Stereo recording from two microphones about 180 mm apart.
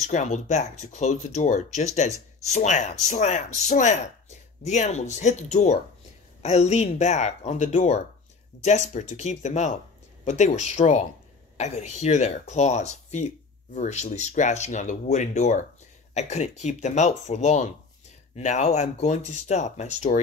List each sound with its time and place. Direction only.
0.1 s speech: 40° left (ahead or behind)